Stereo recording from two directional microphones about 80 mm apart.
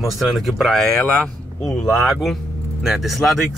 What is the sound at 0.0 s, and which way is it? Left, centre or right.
Speech, centre.